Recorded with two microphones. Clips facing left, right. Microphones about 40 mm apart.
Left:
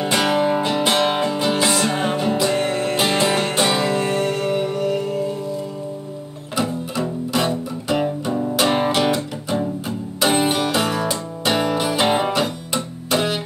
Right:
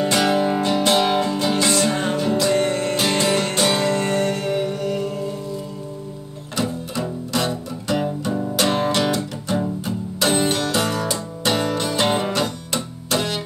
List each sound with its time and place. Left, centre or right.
0.0 s music: centre
2.5 s music: centre
6.5 s music: centre